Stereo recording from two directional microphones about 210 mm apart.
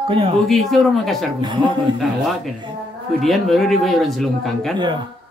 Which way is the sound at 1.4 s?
20° right (ahead or behind).